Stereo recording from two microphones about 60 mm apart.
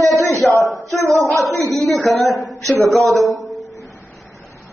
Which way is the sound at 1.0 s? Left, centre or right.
Right.